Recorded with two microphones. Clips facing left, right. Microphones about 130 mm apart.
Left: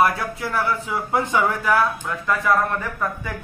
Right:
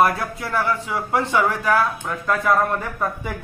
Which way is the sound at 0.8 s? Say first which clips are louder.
Even; 10° left (ahead or behind).